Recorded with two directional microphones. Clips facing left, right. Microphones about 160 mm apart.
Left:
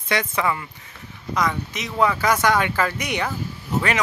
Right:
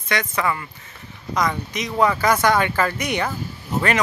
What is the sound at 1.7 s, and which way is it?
Speech, 5° left (ahead or behind).